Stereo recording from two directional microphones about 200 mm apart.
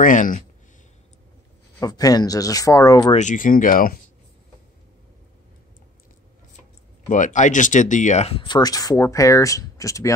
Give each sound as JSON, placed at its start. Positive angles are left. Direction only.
{"t": 0.0, "sound": "speech", "side_deg": 40}
{"t": 1.8, "sound": "speech", "side_deg": 20}
{"t": 3.2, "sound": "speech", "side_deg": 40}
{"t": 7.1, "sound": "speech", "side_deg": 40}